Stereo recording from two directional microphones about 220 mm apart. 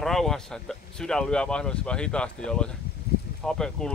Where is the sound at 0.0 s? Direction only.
Centre (ahead or behind).